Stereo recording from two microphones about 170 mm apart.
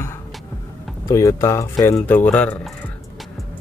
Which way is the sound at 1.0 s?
20° left (ahead or behind).